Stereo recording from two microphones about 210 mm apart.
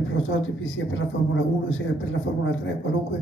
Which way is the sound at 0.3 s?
65° left (ahead or behind).